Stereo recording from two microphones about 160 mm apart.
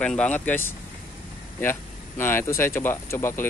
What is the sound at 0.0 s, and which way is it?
Speech, 5° left (ahead or behind).